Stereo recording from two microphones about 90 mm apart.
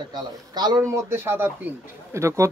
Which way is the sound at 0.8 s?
30° right (ahead or behind).